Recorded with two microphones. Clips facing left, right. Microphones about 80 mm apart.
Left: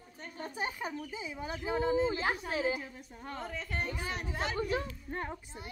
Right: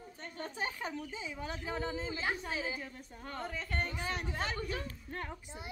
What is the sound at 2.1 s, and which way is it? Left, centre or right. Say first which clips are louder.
Speech: left 4 dB; left.